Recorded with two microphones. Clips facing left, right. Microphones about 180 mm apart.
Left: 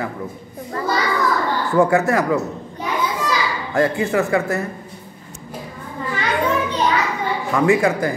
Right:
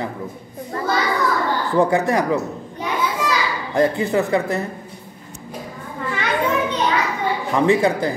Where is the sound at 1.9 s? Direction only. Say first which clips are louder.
Left 1 dB; 20° right (ahead or behind).